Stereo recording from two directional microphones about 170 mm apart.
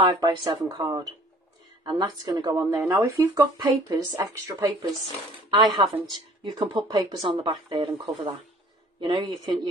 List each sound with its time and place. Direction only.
0.0 s speech: 25° right (ahead or behind)